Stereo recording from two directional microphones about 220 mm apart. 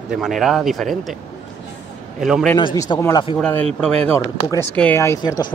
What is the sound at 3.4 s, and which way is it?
Speech, 5° left (ahead or behind).